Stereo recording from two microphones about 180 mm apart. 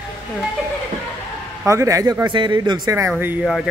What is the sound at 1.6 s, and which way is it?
Speech, 15° right (ahead or behind).